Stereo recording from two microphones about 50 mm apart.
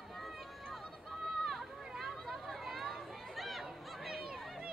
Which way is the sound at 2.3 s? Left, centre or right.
Centre.